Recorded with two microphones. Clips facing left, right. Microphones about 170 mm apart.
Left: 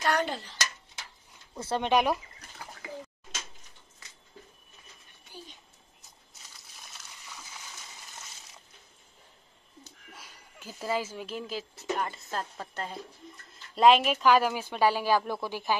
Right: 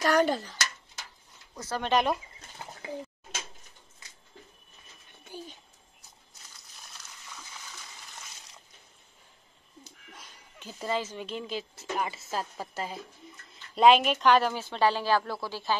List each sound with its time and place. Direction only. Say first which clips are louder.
0.0 s a child's voice: right 4 dB; 40° right (ahead or behind)
1.6 s speech: left 3 dB; 30° left (ahead or behind)
1.9 s a woman's voice: even; 10° left (ahead or behind)
2.4 s bird: even; 25° right (ahead or behind)
2.8 s a sound: right 4 dB; 30° right (ahead or behind)
10.1 s a woman's voice: left 1 dB; 10° left (ahead or behind)